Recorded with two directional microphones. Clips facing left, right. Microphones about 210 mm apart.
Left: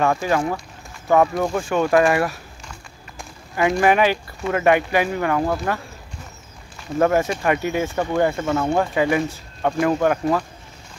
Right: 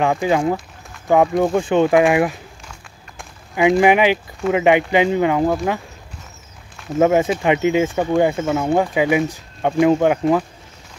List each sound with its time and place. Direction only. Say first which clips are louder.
0.0 s speech: right 3 dB; 15° right (ahead or behind)
3.5 s speech: right 4 dB; 15° right (ahead or behind)
7.0 s speech: right 3 dB; 15° right (ahead or behind)